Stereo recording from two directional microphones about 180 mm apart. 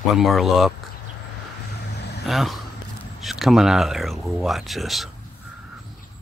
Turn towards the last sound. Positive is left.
turn(degrees=0)  # may be behind; listen again after turning